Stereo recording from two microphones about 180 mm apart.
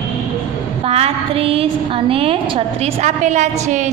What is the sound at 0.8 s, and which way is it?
A woman's voice, 35° right (ahead or behind).